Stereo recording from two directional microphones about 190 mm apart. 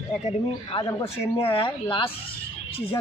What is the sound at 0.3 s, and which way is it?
Speech, 25° left (ahead or behind).